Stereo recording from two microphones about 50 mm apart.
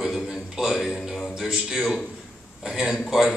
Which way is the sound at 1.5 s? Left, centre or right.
Centre.